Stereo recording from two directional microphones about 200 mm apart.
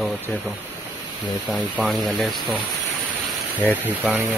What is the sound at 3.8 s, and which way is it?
Speech, 10° right (ahead or behind).